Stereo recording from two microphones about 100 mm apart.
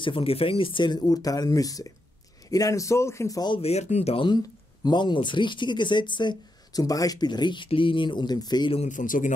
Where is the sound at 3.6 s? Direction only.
90° left.